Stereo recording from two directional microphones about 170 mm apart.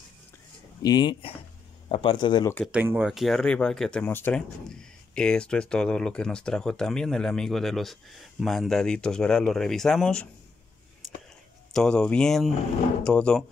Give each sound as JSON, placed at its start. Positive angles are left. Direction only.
{"t": 0.8, "sound": "speech", "side_deg": 25}
{"t": 2.7, "sound": "speech", "side_deg": -10}
{"t": 11.7, "sound": "speech", "side_deg": 5}